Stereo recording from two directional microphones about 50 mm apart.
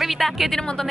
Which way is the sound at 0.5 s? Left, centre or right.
Centre.